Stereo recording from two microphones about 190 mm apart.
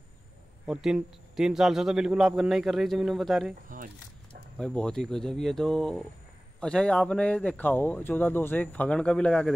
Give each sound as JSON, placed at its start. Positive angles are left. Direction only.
{"t": 0.7, "sound": "a man's voice", "side_deg": -5}
{"t": 3.6, "sound": "speech", "side_deg": -45}
{"t": 4.6, "sound": "a man's voice", "side_deg": 5}